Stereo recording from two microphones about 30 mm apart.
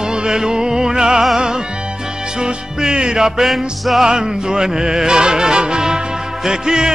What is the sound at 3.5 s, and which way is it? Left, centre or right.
Music, centre.